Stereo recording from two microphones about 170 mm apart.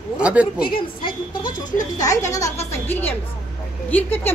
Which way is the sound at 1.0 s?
30° left (ahead or behind).